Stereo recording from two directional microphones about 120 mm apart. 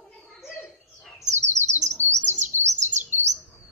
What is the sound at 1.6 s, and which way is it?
Chirp, 75° right (ahead or behind).